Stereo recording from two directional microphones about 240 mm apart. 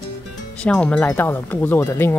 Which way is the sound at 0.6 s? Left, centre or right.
Centre.